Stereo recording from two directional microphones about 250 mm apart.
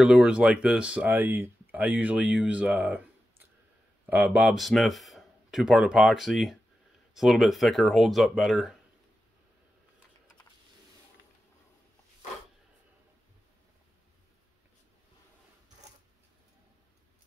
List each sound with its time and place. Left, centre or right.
0.0 s speech: centre
4.0 s speech: centre